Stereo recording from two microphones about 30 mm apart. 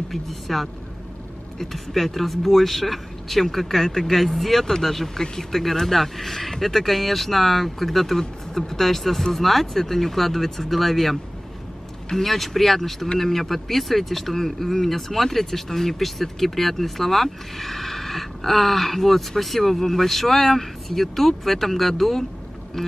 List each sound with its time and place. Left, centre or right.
0.1 s speech: centre
5.2 s speech: left
5.5 s speech: centre
8.2 s speech: centre
12.2 s speech: centre
22.8 s a sound: centre